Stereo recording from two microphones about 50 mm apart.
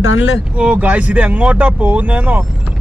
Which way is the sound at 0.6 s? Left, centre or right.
Right.